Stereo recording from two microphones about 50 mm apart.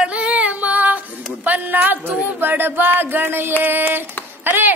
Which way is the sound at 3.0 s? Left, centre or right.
Right.